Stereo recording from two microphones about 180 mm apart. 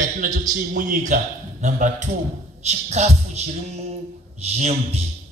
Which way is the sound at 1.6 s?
40° right (ahead or behind).